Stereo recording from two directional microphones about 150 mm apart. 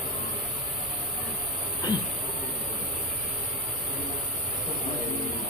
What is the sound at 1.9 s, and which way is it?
Printer, 30° left (ahead or behind).